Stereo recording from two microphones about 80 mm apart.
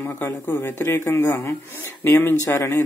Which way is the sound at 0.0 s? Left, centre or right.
Left.